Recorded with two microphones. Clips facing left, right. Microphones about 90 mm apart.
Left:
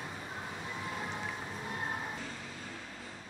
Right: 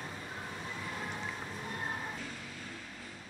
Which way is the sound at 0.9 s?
15° left (ahead or behind).